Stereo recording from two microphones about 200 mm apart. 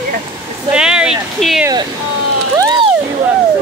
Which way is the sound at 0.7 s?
5° right (ahead or behind).